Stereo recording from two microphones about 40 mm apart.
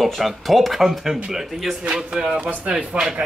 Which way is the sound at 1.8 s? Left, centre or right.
Centre.